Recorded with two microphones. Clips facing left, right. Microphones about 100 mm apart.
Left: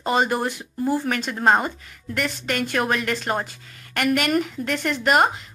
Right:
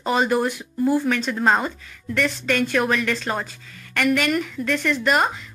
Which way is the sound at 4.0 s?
50° left (ahead or behind).